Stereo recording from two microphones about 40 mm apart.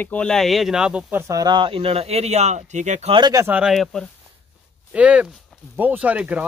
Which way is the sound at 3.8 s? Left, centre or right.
Centre.